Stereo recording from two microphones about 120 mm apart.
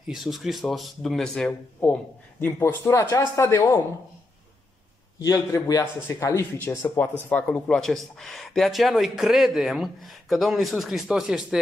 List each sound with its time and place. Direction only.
0.0 s speech: 5° right (ahead or behind)
1.8 s a man's voice: 15° left (ahead or behind)
5.2 s speech: 30° left (ahead or behind); by 11.6 s 5° right (ahead or behind)